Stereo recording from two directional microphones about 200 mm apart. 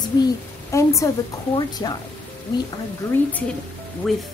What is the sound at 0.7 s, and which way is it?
A woman's voice, 15° left (ahead or behind).